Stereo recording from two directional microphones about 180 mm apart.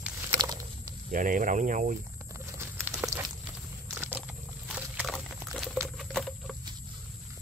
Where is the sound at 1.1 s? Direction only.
50° right (ahead or behind).